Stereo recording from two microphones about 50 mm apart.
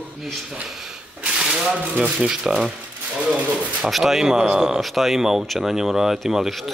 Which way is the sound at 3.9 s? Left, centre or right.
Centre.